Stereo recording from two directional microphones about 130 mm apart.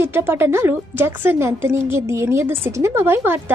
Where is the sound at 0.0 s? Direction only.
15° right (ahead or behind).